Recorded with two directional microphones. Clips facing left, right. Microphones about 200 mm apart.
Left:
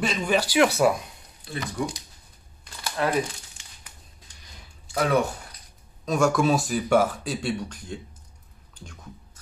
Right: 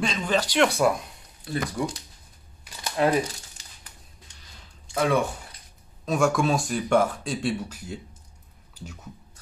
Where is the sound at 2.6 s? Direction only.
15° right (ahead or behind).